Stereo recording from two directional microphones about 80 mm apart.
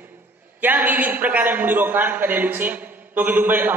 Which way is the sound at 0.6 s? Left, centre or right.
Right.